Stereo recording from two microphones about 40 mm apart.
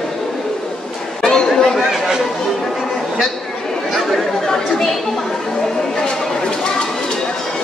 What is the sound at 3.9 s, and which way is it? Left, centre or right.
Chatter, centre.